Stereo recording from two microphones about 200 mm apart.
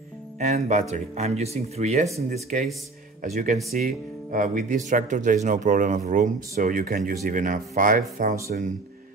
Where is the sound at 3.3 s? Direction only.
35° right (ahead or behind).